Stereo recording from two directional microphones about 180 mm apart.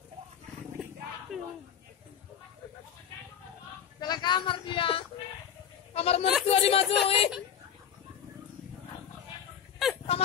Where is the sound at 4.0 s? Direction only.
25° left (ahead or behind).